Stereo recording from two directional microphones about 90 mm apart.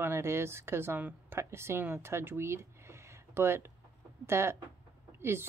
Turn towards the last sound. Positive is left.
turn(degrees=-25)  # may be behind; listen again after turning